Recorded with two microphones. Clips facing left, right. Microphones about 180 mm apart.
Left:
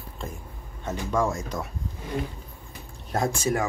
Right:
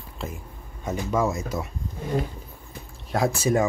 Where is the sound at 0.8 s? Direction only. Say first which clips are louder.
Right 1 dB; 10° right (ahead or behind).